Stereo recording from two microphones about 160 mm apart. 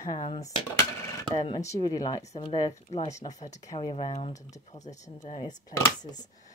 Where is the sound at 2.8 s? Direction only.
45° left (ahead or behind).